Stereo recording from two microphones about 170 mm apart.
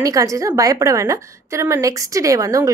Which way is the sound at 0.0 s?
20° right (ahead or behind).